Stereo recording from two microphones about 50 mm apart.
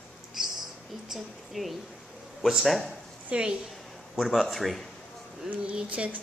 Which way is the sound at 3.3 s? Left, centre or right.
Centre.